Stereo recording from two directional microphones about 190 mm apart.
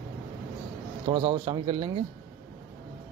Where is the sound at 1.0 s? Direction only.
25° right (ahead or behind).